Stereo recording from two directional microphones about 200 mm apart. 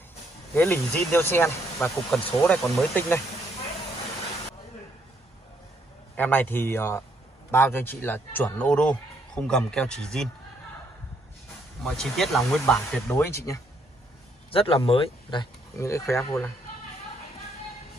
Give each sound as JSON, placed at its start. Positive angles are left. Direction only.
{"t": 0.6, "sound": "speech", "side_deg": 10}
{"t": 6.1, "sound": "speech", "side_deg": 10}
{"t": 11.8, "sound": "speech", "side_deg": 0}
{"t": 13.1, "sound": "speech", "side_deg": 15}
{"t": 14.5, "sound": "speech", "side_deg": 25}
{"t": 15.8, "sound": "speech", "side_deg": 15}